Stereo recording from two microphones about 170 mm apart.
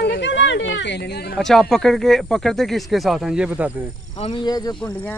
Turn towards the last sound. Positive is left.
turn(degrees=10)  # may be behind; listen again after turning